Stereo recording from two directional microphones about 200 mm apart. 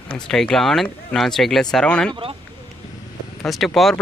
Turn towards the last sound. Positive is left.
turn(degrees=0)  # may be behind; listen again after turning